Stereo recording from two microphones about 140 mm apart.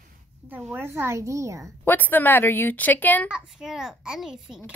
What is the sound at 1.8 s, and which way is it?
A woman's voice, 15° left (ahead or behind).